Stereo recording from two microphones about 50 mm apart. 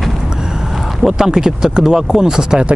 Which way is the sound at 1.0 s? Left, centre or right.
Centre.